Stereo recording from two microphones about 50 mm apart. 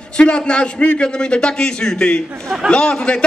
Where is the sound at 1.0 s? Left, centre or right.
Centre.